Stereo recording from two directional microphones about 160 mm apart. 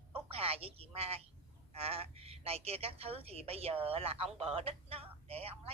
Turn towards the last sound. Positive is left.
turn(degrees=-40)  # may be behind; listen again after turning